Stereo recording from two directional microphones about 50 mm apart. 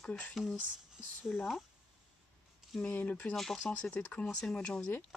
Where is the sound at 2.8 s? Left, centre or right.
Left.